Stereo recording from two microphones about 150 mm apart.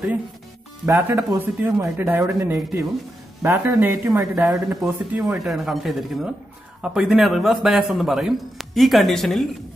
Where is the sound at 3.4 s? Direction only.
15° right (ahead or behind).